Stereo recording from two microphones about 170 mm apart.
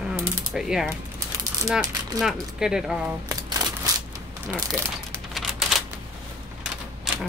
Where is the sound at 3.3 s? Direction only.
20° right (ahead or behind).